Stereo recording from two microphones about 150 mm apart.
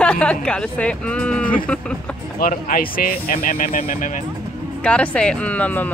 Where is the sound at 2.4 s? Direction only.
70° left (ahead or behind).